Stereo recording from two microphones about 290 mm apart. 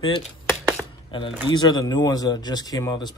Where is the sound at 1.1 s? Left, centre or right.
Centre.